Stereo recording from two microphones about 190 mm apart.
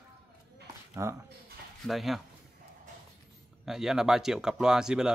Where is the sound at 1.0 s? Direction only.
15° right (ahead or behind).